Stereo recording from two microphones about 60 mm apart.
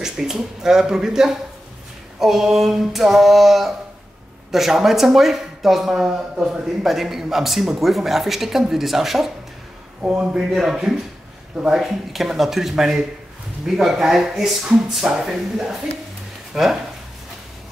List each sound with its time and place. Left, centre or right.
0.0 s speech: centre
10.0 s a man's voice: right
10.5 s speech: centre